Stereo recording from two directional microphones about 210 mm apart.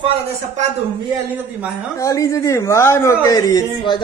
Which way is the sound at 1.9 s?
15° left (ahead or behind).